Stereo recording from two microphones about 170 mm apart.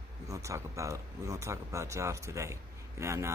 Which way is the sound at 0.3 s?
20° right (ahead or behind).